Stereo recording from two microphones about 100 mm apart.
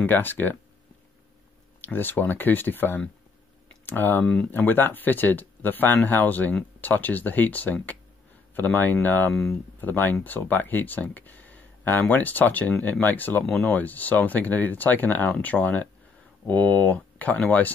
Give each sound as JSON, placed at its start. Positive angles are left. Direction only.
{"t": 0.0, "sound": "speech", "side_deg": 20}
{"t": 1.8, "sound": "speech", "side_deg": 20}